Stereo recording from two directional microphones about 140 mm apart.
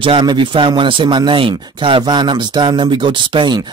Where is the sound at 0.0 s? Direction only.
35° right (ahead or behind).